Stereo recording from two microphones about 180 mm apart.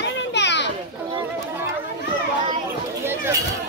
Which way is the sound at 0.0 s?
75° left (ahead or behind).